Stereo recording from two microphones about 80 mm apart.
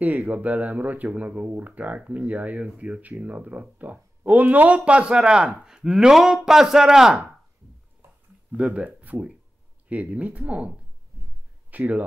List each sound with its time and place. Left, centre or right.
0.0 s speech: centre
8.5 s speech: centre
11.7 s speech: right